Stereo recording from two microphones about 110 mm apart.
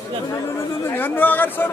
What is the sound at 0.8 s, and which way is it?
Speech, 20° left (ahead or behind).